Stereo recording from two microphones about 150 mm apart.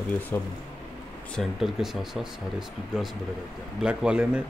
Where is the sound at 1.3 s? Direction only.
Centre (ahead or behind).